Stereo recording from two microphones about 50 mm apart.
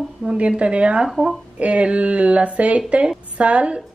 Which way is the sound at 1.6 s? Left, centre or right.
Right.